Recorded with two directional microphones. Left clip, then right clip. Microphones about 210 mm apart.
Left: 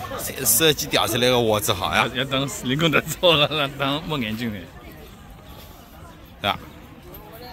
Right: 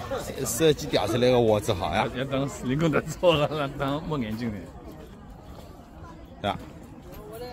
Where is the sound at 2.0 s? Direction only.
25° left (ahead or behind).